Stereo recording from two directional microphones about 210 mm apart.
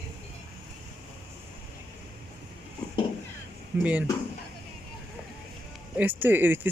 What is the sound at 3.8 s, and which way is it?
Speech, 5° right (ahead or behind).